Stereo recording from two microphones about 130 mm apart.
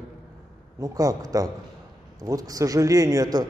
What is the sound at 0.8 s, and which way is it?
A man's voice, 25° right (ahead or behind).